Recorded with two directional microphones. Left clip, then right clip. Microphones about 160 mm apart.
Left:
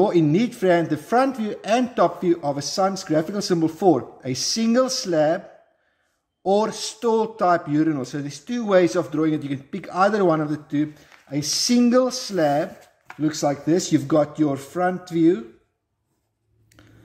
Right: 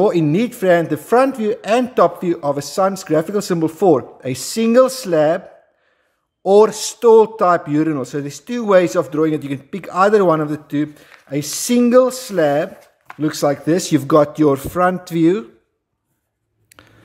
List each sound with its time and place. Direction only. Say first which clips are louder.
0.0 s a man's voice: right 3 dB; 30° right (ahead or behind)
6.4 s a man's voice: right 9 dB; 40° right (ahead or behind); by 15.4 s 55° right (ahead or behind)
16.7 s a sound: right 8 dB; 50° right (ahead or behind)